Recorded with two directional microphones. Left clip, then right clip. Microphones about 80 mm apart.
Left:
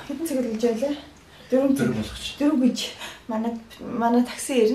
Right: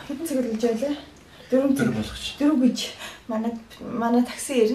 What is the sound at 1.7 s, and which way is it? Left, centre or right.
Speech, right.